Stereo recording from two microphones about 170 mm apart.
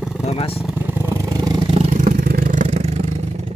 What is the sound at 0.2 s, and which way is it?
Vehicle, 35° left (ahead or behind).